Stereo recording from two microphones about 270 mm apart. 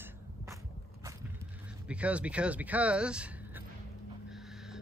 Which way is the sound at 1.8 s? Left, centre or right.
Centre.